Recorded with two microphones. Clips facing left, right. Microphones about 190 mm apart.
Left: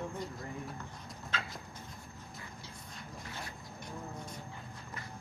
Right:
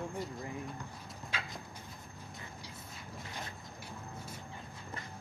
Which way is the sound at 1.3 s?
10° right (ahead or behind).